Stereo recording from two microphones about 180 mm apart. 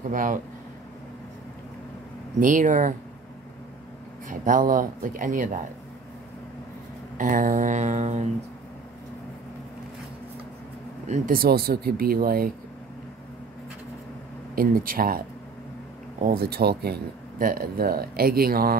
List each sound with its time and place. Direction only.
0.1 s speech: 50° right (ahead or behind)
2.4 s speech: 45° right (ahead or behind)
4.3 s speech: 50° right (ahead or behind)
7.2 s speech: 50° right (ahead or behind)
11.1 s speech: 55° right (ahead or behind)
14.5 s speech: 55° right (ahead or behind)